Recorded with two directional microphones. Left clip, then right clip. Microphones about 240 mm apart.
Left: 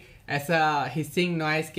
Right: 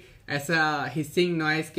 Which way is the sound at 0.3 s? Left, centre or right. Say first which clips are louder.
Left 1 dB; centre.